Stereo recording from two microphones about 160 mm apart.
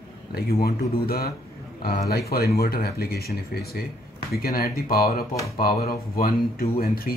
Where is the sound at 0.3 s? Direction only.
70° left (ahead or behind).